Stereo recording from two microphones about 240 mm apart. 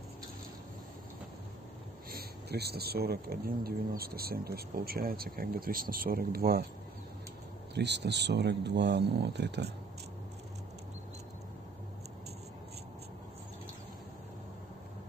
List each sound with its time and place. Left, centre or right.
2.0 s speech: right
7.7 s speech: right